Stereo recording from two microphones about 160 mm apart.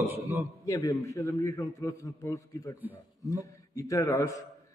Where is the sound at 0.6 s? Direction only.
20° left (ahead or behind).